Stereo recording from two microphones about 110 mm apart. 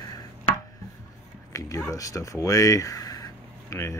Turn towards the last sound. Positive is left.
turn(degrees=25)  # may be behind; listen again after turning